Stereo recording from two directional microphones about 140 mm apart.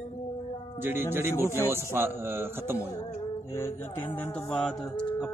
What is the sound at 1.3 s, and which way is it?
Speech, 20° left (ahead or behind).